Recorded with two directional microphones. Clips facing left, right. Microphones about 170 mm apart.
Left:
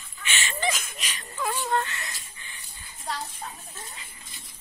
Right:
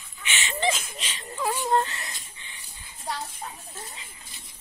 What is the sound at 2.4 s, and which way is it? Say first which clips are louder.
Dog: even; 10° right (ahead or behind).